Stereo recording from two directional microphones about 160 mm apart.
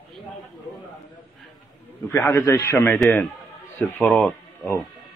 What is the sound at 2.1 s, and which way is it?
A man's voice, 15° left (ahead or behind).